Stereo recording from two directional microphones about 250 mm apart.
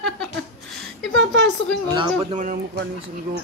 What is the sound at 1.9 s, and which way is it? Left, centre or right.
Speech, centre.